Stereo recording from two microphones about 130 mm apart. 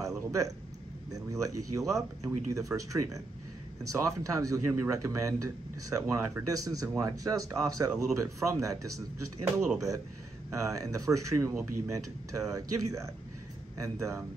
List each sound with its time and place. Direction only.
0.3 s a man's voice: 25° right (ahead or behind)